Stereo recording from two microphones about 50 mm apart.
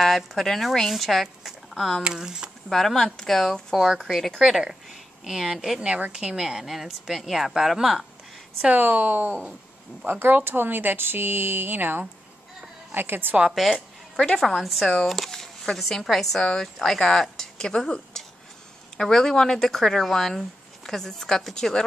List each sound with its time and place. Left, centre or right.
0.0 s speech: centre
2.0 s speech: centre
2.7 s a woman's voice: centre
5.8 s a woman's voice: centre
8.7 s speech: right
13.5 s a woman's voice: centre
15.0 s a sound: centre
15.8 s speech: centre